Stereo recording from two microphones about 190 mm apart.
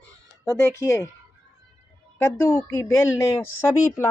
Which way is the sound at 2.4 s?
15° left (ahead or behind).